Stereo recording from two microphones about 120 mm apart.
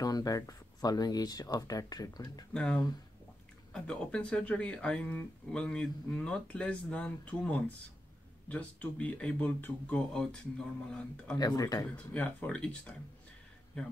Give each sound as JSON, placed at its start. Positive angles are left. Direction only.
{"t": 0.0, "sound": "speech", "side_deg": 30}
{"t": 2.5, "sound": "speech", "side_deg": 5}
{"t": 11.3, "sound": "speech", "side_deg": 35}
{"t": 11.9, "sound": "speech", "side_deg": 10}
{"t": 13.7, "sound": "speech", "side_deg": 10}